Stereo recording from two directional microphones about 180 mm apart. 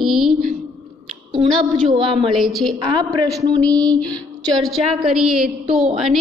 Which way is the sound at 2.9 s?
20° right (ahead or behind).